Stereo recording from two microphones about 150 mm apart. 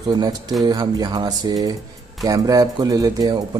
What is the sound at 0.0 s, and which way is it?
Speech, 25° right (ahead or behind).